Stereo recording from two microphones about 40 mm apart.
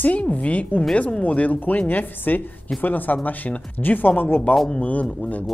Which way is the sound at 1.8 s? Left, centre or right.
Left.